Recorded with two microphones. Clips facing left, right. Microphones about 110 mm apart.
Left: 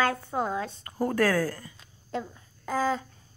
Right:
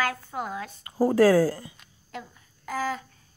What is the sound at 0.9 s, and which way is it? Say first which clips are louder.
Speech: right 7 dB; 15° right (ahead or behind).